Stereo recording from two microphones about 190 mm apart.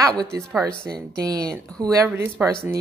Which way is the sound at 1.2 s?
20° right (ahead or behind).